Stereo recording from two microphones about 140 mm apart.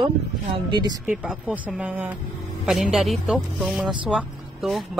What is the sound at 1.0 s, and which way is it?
Speech, 10° right (ahead or behind).